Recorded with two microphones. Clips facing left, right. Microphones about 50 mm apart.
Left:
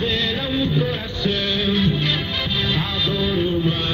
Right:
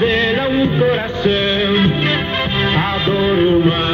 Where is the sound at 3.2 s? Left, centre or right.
Right.